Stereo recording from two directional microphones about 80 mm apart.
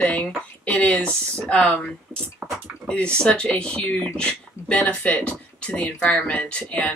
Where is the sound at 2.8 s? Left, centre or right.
Centre.